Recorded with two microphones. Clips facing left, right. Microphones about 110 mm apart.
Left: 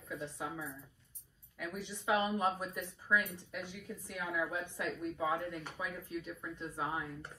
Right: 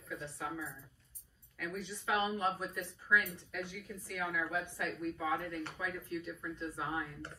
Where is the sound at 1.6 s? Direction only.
20° left (ahead or behind).